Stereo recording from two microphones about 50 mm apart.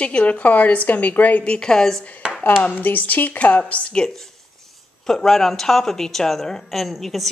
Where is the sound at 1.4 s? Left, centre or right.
Centre.